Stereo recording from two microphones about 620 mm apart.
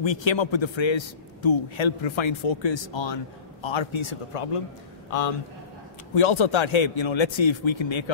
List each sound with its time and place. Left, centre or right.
0.0 s a man's voice: left
6.1 s a man's voice: left